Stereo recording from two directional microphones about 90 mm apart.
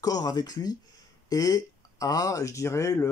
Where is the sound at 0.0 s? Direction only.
45° left (ahead or behind).